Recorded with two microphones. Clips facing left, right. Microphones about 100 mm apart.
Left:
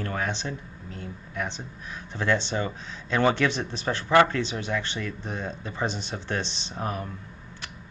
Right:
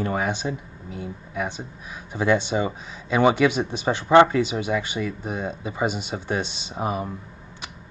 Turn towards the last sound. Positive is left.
turn(degrees=-10)  # may be behind; listen again after turning